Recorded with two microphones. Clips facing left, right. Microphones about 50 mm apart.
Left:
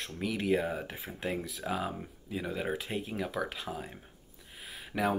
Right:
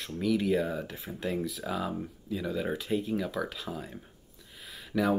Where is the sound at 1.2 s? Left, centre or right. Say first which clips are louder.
Right 3 dB; centre.